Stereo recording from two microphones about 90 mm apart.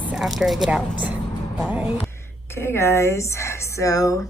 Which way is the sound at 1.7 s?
15° right (ahead or behind).